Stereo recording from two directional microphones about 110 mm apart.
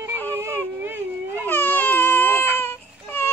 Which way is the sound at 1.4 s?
15° left (ahead or behind).